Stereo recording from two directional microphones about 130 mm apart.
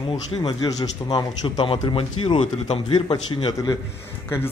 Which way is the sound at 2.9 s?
40° left (ahead or behind).